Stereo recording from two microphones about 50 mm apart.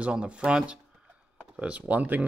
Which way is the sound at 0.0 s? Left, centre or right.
Right.